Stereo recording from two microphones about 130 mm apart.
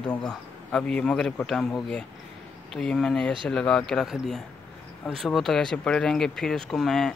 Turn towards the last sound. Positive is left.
turn(degrees=5)  # may be behind; listen again after turning